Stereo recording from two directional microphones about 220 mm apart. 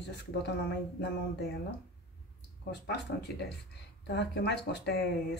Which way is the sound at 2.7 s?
50° left (ahead or behind).